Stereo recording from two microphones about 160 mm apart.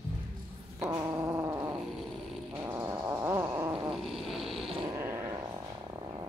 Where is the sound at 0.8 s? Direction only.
15° right (ahead or behind).